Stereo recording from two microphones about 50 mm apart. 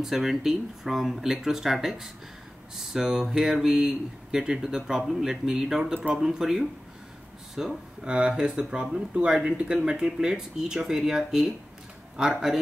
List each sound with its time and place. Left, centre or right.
0.0 s speech: centre